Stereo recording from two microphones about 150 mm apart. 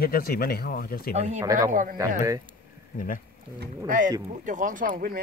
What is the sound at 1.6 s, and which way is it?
Speech, 60° right (ahead or behind).